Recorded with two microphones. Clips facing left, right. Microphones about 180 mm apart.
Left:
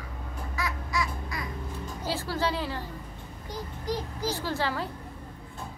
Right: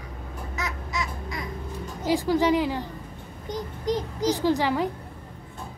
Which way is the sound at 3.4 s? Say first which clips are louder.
Right 6 dB; 20° right (ahead or behind).